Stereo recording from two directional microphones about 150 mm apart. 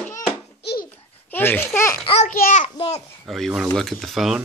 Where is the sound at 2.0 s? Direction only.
40° left (ahead or behind).